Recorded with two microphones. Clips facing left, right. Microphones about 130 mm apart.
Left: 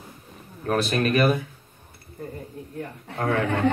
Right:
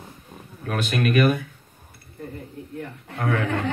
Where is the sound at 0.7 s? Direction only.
35° left (ahead or behind).